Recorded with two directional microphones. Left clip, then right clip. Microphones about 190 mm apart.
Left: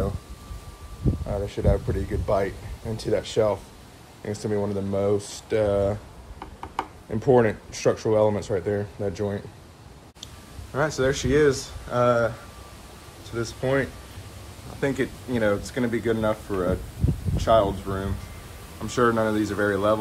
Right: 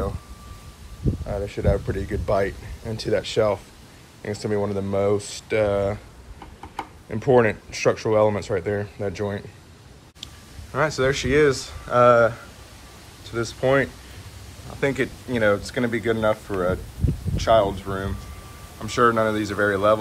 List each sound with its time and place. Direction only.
1.2 s speech: 5° left (ahead or behind)
1.7 s speech: centre (ahead or behind)
2.8 s speech: 10° left (ahead or behind)
7.1 s speech: 10° left (ahead or behind)